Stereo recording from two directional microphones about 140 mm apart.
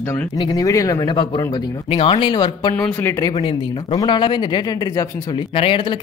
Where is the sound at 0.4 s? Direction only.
25° left (ahead or behind).